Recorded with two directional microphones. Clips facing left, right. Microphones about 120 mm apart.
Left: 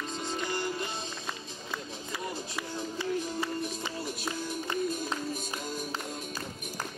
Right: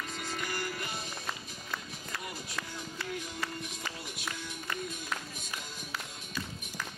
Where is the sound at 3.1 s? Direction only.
35° left (ahead or behind).